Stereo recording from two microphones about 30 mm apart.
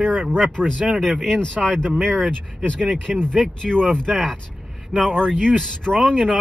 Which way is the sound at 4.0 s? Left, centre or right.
Centre.